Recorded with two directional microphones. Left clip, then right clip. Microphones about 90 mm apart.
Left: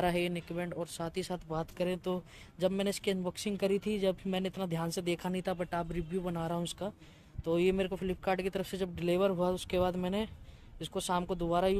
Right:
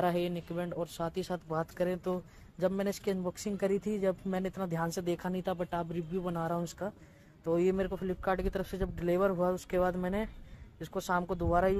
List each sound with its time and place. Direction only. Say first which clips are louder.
0.0 s speech: right 1 dB; 20° left (ahead or behind); by 1.7 s 5° left (ahead or behind)
1.8 s speech: right 1 dB; 20° left (ahead or behind)
10.8 s speech: right 1 dB; 20° left (ahead or behind)